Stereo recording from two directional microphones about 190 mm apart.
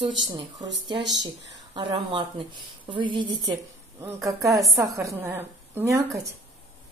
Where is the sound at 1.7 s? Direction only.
25° right (ahead or behind).